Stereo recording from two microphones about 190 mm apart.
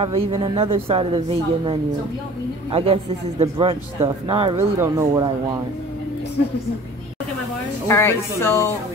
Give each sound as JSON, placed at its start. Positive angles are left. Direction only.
{"t": 0.0, "sound": "speech", "side_deg": -30}
{"t": 4.6, "sound": "speech", "side_deg": -15}
{"t": 7.9, "sound": "speech", "side_deg": 15}